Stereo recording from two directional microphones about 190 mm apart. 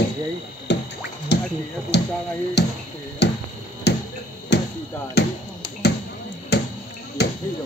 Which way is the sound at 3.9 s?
60° left (ahead or behind).